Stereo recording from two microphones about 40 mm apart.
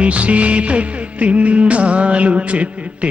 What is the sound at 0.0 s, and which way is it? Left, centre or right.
Music, right.